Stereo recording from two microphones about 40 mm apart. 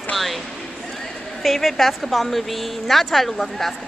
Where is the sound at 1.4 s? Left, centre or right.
Centre.